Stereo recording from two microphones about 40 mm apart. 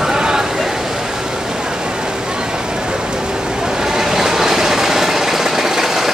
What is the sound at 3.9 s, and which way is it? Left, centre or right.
Vehicle, centre.